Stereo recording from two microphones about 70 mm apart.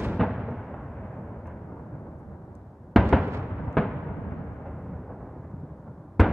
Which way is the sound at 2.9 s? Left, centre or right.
Centre.